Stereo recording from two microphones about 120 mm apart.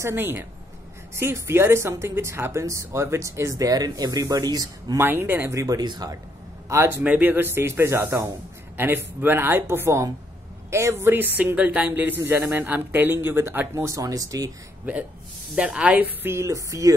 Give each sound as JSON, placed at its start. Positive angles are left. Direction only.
{"t": 0.0, "sound": "a woman's voice", "side_deg": -20}
{"t": 4.9, "sound": "a woman's voice", "side_deg": -15}
{"t": 6.7, "sound": "a woman's voice", "side_deg": -25}
{"t": 7.0, "sound": "a woman's voice", "side_deg": -10}
{"t": 15.5, "sound": "speech", "side_deg": -10}